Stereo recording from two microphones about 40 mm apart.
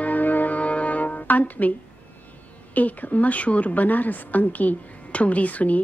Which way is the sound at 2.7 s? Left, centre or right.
Left.